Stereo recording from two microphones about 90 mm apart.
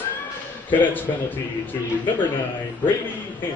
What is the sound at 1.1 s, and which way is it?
Speech, 45° left (ahead or behind).